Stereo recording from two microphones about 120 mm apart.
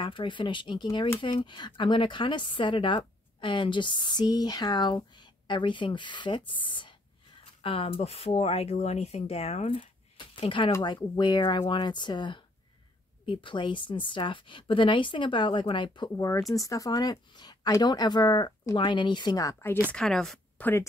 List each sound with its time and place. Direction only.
0.0 s a woman's voice: 45° left (ahead or behind); by 9.8 s 60° left (ahead or behind)
10.1 s a woman's voice: 50° left (ahead or behind)
16.5 s speech: 30° left (ahead or behind)
19.9 s speech: 5° left (ahead or behind)